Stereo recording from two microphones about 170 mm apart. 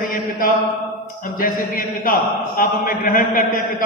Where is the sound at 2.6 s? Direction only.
55° left (ahead or behind).